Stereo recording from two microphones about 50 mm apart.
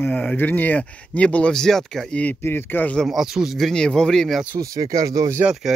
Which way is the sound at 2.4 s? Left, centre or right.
Left.